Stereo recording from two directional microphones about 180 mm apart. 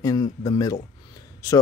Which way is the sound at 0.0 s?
20° left (ahead or behind).